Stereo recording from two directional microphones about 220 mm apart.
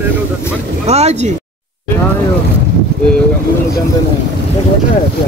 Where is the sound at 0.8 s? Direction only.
30° right (ahead or behind).